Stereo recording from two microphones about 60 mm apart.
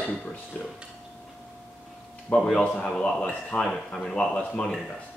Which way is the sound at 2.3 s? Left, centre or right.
Centre.